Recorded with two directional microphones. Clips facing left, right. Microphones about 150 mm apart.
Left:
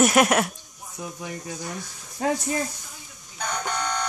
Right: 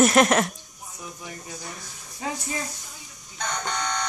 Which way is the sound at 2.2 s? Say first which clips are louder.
Left 7 dB; 65° left (ahead or behind).